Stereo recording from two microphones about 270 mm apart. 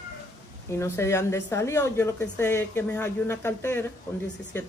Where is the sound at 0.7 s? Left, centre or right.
Centre.